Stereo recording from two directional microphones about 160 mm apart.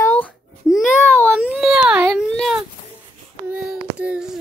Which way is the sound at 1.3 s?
5° right (ahead or behind).